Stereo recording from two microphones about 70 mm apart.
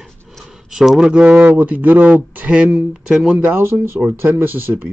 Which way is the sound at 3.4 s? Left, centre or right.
Right.